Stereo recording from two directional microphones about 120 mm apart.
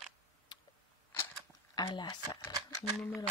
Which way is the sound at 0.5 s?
35° left (ahead or behind).